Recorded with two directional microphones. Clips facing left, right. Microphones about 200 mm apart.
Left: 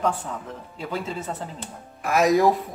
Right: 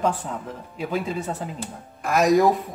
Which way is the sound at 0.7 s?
15° right (ahead or behind).